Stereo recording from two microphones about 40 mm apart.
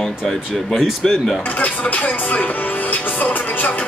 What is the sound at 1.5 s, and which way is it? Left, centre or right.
Music, left.